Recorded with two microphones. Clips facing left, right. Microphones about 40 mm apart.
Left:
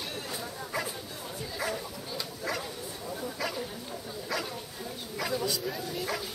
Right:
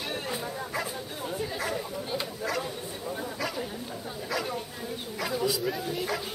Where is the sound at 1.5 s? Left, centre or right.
Centre.